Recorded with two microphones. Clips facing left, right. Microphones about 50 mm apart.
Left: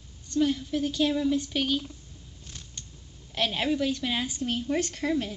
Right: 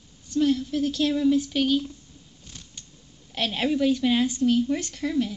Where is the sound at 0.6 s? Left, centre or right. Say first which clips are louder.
Right 2 dB; centre.